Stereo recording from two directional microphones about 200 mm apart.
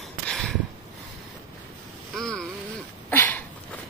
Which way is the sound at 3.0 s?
10° left (ahead or behind).